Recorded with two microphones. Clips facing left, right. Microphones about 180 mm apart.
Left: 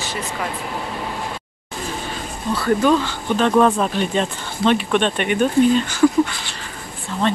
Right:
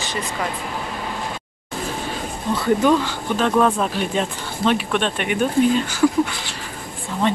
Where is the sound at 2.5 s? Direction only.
20° right (ahead or behind).